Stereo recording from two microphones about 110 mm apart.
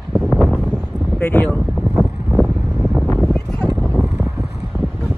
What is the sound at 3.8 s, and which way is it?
Vehicle, 10° left (ahead or behind).